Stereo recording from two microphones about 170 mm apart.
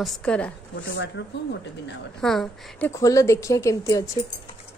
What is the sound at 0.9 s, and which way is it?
Speech, 90° left.